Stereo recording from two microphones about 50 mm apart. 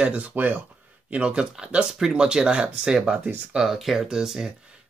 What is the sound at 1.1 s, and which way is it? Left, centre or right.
Speech, centre.